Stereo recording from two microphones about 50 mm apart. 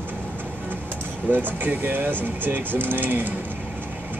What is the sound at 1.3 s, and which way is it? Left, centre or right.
Speech, right.